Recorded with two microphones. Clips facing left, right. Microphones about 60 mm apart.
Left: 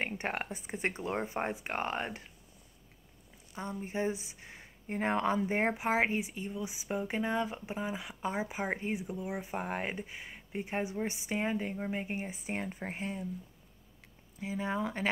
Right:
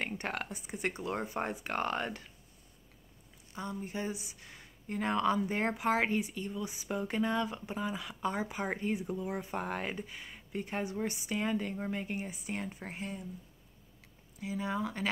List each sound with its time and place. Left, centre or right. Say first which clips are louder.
0.2 s speech: left 2 dB; left
3.5 s speech: left 2 dB; left
14.4 s speech: left 1 dB; left